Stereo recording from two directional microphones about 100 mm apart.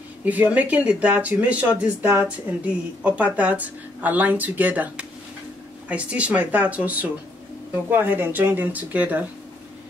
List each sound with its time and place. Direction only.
0.2 s speech: 15° right (ahead or behind)